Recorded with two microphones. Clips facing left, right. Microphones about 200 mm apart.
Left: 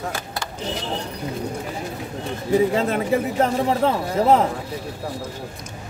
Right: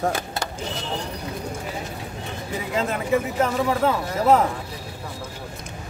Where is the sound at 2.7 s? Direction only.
35° left (ahead or behind).